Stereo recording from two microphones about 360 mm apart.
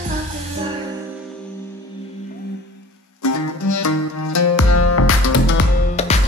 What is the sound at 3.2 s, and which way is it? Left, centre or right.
Music, left.